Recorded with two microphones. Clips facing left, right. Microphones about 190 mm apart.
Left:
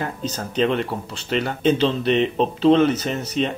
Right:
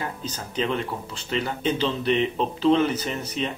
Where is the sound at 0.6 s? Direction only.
65° left (ahead or behind).